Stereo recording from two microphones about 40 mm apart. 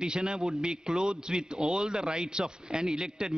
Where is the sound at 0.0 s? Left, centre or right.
Centre.